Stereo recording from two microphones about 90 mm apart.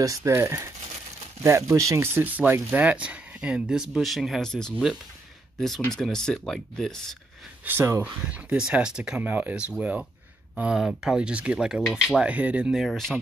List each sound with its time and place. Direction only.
0.0 s speech: 35° right (ahead or behind); by 4.8 s 5° left (ahead or behind)
5.9 s speech: 5° left (ahead or behind)
7.6 s speech: 25° right (ahead or behind)
8.0 s speech: 15° right (ahead or behind)
12.7 s speech: 5° left (ahead or behind)